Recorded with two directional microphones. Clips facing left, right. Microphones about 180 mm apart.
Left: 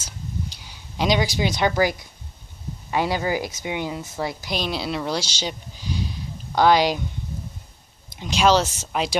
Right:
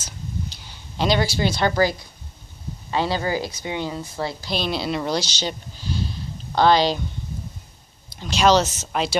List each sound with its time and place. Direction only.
0.7 s speech: 10° left (ahead or behind)
8.1 s speech: 15° left (ahead or behind)